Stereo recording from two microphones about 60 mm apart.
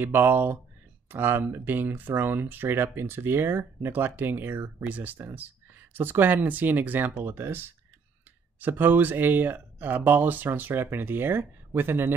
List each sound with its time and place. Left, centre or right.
0.0 s speech: right